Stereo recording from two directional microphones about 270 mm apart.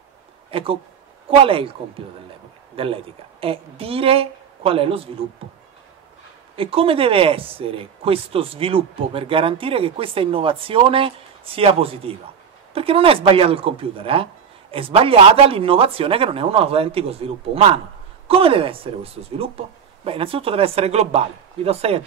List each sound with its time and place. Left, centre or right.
0.5 s a sound: centre
1.4 s speech: centre
2.7 s speech: right
6.5 s speech: right